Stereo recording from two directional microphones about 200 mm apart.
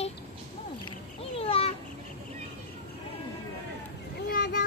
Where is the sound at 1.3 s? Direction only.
30° left (ahead or behind).